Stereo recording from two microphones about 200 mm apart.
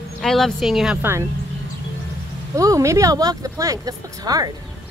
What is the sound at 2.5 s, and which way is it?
Speech, 15° right (ahead or behind).